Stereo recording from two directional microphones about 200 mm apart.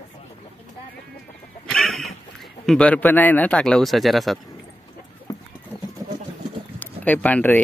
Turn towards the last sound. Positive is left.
turn(degrees=10)  # may be behind; listen again after turning